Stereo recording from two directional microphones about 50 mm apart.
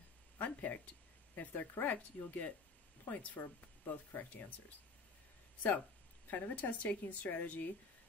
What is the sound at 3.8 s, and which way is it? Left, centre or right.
Speech, left.